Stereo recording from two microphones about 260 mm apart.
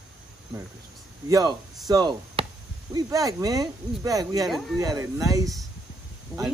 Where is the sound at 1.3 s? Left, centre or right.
Centre.